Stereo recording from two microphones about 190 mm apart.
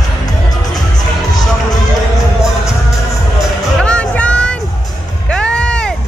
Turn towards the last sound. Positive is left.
turn(degrees=5)  # may be behind; listen again after turning